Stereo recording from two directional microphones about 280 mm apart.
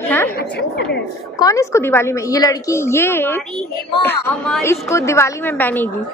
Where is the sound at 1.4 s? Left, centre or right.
Centre.